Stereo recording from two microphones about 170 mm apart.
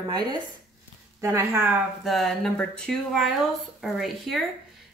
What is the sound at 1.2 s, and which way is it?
Speech, 15° right (ahead or behind).